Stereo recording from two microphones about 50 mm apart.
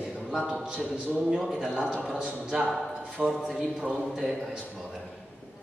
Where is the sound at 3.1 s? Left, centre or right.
Centre.